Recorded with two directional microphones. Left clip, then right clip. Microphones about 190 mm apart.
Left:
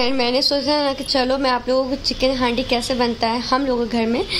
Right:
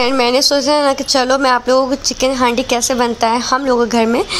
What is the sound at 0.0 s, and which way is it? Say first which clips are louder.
Speech: right 6 dB; 20° right (ahead or behind).